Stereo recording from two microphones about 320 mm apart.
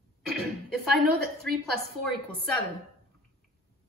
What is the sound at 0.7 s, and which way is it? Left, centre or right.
Speech, right.